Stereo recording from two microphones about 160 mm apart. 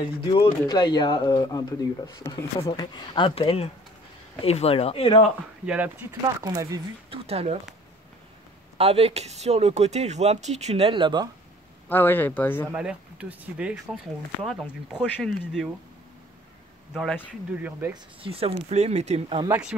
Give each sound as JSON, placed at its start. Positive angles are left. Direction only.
{"t": 0.0, "sound": "speech", "side_deg": 30}
{"t": 5.7, "sound": "speech", "side_deg": -10}
{"t": 6.4, "sound": "speech", "side_deg": -20}
{"t": 7.1, "sound": "speech", "side_deg": -40}
{"t": 8.7, "sound": "speech", "side_deg": -40}
{"t": 11.9, "sound": "speech", "side_deg": 10}
{"t": 12.7, "sound": "speech", "side_deg": -5}
{"t": 16.9, "sound": "speech", "side_deg": -5}
{"t": 18.2, "sound": "speech", "side_deg": -35}